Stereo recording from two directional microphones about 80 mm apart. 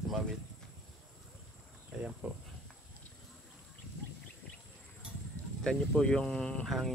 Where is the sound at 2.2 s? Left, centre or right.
Centre.